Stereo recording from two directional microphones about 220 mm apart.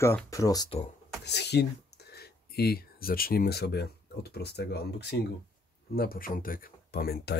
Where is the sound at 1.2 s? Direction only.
50° left (ahead or behind).